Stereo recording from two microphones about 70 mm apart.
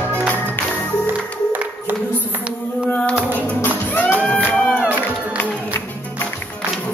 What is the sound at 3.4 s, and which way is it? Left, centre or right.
Music, left.